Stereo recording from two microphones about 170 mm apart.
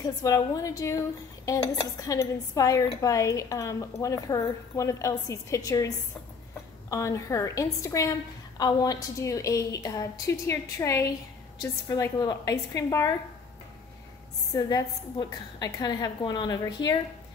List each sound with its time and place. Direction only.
0.0 s speech: 20° left (ahead or behind)
14.5 s speech: 20° left (ahead or behind)